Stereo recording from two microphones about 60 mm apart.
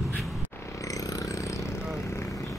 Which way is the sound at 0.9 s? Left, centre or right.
Left.